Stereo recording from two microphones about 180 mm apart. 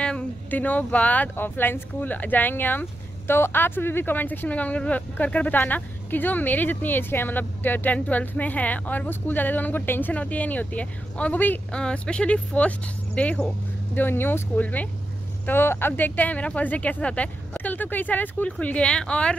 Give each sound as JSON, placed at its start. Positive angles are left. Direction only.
{"t": 0.0, "sound": "speech", "side_deg": 5}